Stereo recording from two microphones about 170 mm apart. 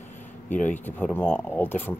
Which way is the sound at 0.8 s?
10° left (ahead or behind).